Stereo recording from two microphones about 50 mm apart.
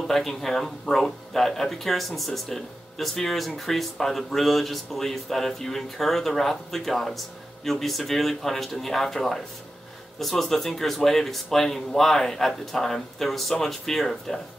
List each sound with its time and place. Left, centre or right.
0.0 s speech: centre